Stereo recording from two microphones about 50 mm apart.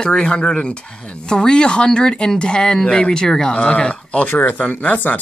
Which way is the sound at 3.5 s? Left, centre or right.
Left.